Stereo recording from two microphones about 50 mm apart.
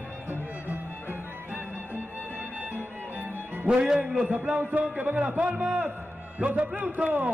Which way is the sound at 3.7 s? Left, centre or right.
Centre.